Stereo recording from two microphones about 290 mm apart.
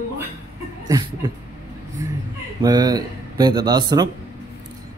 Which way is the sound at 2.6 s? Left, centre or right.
Centre.